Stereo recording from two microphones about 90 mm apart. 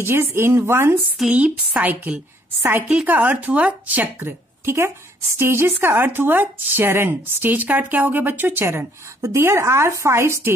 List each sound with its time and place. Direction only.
0.0 s speech: 25° right (ahead or behind)
1.3 s a woman's voice: 15° right (ahead or behind)